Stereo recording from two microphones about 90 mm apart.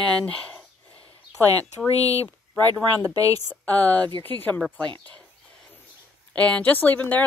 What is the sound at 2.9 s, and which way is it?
Speech, 45° right (ahead or behind).